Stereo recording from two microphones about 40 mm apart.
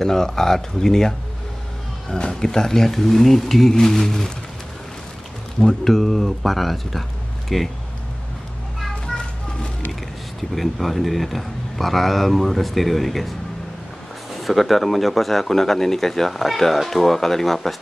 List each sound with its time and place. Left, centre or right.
0.0 s speech: centre
5.6 s speech: centre
9.0 s children playing: centre
10.5 s speech: centre
14.4 s speech: centre